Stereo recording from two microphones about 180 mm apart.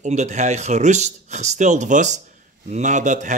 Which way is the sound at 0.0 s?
40° right (ahead or behind).